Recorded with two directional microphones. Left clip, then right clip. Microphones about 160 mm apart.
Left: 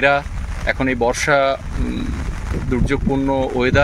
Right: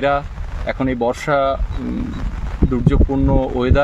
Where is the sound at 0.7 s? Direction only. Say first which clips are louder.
Left 1 dB; 5° right (ahead or behind).